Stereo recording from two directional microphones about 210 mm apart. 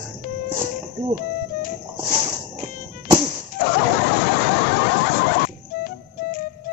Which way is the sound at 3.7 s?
55° left (ahead or behind).